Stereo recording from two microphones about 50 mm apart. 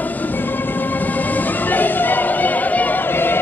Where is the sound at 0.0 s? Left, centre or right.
Left.